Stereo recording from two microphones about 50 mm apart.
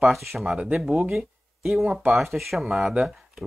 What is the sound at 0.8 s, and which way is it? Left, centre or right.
Speech, centre.